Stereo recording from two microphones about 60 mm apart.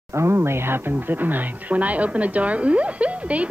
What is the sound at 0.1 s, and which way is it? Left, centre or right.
Speech, right.